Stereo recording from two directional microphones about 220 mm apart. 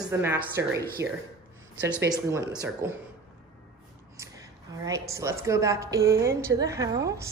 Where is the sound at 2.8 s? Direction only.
15° right (ahead or behind).